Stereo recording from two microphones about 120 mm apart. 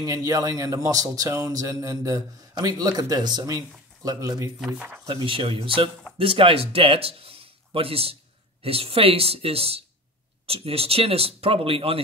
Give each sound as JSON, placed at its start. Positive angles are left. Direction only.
{"t": 0.0, "sound": "speech", "side_deg": -30}
{"t": 4.6, "sound": "speech", "side_deg": -5}
{"t": 5.0, "sound": "speech", "side_deg": -45}